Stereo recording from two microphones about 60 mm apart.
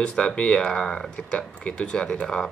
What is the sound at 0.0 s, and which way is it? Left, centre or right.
Speech, centre.